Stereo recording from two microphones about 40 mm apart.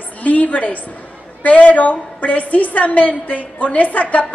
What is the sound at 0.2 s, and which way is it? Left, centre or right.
A woman's voice, left.